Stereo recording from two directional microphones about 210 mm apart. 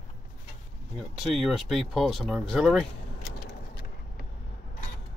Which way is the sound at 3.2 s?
50° left (ahead or behind).